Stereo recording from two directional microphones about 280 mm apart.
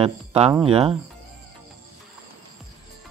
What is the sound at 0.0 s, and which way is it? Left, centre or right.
Speech, centre.